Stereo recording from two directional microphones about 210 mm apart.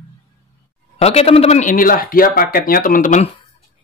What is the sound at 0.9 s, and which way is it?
Speech, 30° left (ahead or behind).